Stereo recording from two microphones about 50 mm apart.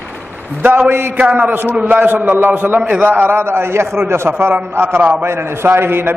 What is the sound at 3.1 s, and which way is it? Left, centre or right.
A man's voice, right.